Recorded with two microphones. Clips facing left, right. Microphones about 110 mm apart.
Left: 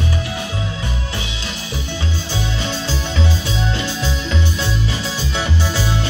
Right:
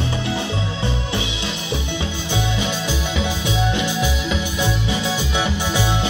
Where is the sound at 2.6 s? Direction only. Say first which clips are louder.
Even; 15° right (ahead or behind).